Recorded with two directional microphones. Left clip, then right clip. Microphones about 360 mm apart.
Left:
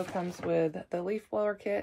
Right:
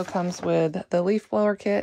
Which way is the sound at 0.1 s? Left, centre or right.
Right.